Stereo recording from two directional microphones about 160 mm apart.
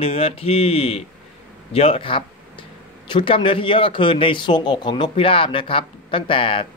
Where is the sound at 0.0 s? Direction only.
35° left (ahead or behind).